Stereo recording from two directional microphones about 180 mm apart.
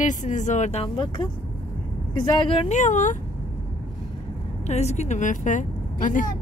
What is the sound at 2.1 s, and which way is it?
Speech, 25° left (ahead or behind).